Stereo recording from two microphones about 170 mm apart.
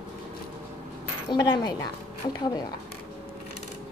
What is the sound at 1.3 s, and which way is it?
A woman's voice, 25° left (ahead or behind).